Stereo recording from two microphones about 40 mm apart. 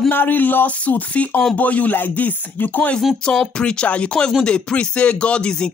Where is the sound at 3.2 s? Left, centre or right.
Left.